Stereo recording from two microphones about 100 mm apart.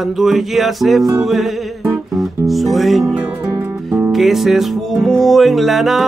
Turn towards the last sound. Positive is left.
turn(degrees=0)  # may be behind; listen again after turning